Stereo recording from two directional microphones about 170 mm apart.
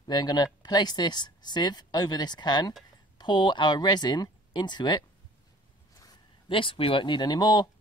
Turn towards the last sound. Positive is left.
turn(degrees=25)  # may be behind; listen again after turning